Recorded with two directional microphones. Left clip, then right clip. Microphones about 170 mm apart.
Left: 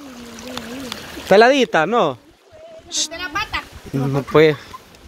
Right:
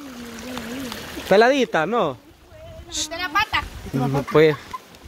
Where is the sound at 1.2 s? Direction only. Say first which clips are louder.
Left 4 dB; 20° left (ahead or behind).